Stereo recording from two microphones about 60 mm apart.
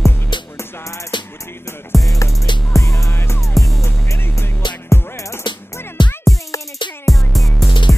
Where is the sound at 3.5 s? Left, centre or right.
Centre.